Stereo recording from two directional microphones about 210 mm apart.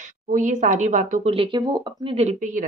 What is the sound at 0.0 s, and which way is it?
A woman's voice, 35° right (ahead or behind).